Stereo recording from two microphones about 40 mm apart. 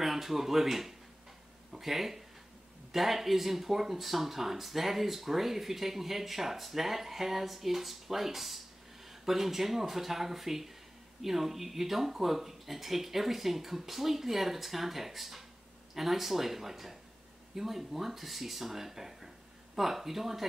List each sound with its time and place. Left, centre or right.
0.0 s speech: centre